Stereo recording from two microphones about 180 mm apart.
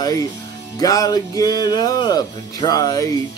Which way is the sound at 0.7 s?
20° left (ahead or behind).